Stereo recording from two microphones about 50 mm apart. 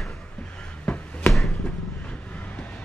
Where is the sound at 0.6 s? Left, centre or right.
Left.